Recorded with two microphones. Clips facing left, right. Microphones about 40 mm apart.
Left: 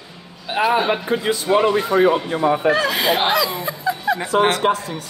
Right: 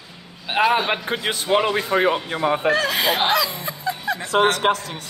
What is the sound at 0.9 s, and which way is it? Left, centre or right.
Speech, right.